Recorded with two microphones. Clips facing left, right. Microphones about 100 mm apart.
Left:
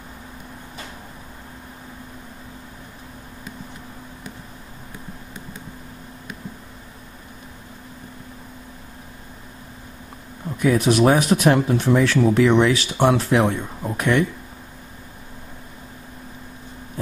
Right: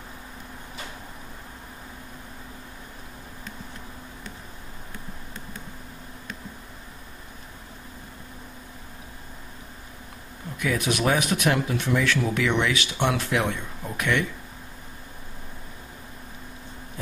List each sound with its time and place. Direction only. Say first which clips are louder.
10.6 s speech: left 8 dB; 35° left (ahead or behind)